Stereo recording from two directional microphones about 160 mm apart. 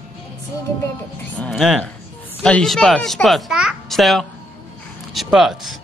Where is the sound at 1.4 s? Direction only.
Centre (ahead or behind).